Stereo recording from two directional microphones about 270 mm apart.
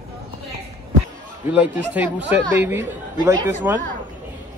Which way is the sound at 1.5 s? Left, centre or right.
Centre.